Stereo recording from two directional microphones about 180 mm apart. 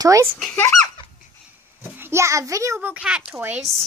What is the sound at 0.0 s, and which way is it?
Speech, 20° right (ahead or behind).